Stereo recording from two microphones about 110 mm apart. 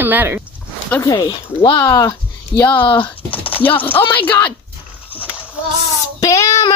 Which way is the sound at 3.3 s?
15° left (ahead or behind).